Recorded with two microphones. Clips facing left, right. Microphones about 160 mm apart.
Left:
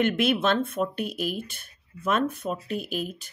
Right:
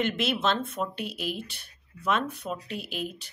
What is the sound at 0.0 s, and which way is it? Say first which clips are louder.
Speech: left 4 dB; 55° left (ahead or behind).